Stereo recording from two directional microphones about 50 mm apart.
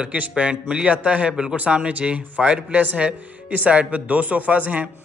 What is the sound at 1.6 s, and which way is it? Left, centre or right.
A man's voice, right.